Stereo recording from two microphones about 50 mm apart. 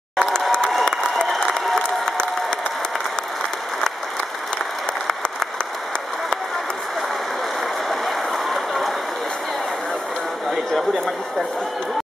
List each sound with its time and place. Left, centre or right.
0.2 s applause: centre
0.8 s applause: centre
1.8 s applause: centre
8.5 s a sound: centre